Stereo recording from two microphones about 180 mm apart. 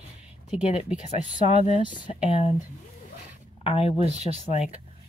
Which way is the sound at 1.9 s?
25° left (ahead or behind).